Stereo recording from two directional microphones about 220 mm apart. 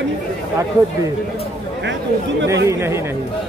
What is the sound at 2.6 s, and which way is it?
Speech, 10° right (ahead or behind).